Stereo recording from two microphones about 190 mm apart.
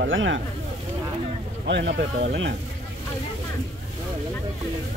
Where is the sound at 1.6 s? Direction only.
65° right (ahead or behind).